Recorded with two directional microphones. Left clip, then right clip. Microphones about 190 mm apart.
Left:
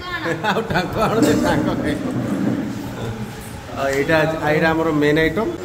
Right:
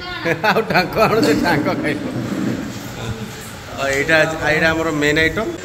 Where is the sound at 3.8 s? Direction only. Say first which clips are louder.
Right 2 dB; 20° left (ahead or behind).